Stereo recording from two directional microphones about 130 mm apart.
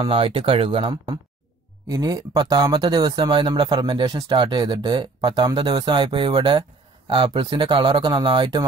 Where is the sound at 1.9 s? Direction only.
30° right (ahead or behind).